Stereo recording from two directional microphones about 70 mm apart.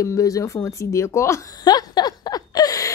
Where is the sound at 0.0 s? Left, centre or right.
Left.